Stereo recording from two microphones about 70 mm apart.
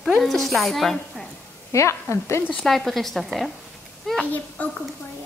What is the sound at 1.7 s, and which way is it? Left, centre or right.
Speech, left.